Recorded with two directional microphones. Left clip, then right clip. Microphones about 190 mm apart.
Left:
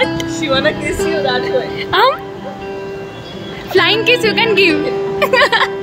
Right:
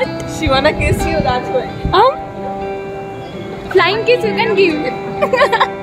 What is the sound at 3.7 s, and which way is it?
A woman's voice, 5° right (ahead or behind).